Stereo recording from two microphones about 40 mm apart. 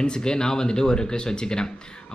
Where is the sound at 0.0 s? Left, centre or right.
Centre.